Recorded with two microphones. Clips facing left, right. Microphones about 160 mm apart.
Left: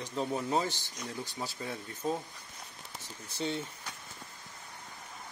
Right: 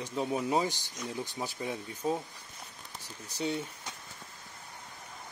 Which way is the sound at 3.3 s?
10° right (ahead or behind).